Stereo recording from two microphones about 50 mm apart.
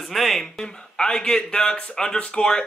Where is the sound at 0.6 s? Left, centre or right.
Centre.